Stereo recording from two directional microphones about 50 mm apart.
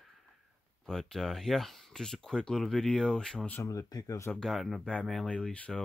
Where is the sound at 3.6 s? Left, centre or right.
Left.